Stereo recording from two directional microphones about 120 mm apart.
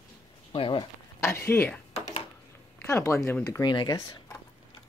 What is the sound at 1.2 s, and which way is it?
Speech, 25° left (ahead or behind).